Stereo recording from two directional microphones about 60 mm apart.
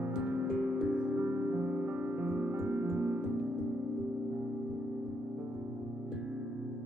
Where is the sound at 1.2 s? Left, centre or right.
Right.